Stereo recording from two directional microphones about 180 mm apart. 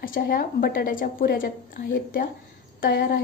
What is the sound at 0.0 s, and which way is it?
A woman's voice, 50° left (ahead or behind).